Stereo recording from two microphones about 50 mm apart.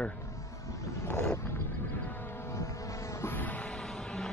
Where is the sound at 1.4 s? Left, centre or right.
Left.